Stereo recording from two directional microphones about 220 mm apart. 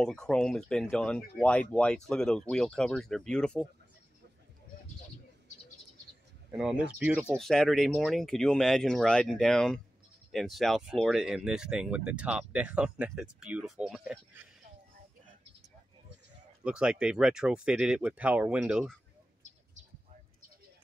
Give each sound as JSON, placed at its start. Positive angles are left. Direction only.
{"t": 0.0, "sound": "speech", "side_deg": 5}
{"t": 6.5, "sound": "speech", "side_deg": -5}
{"t": 16.6, "sound": "speech", "side_deg": -5}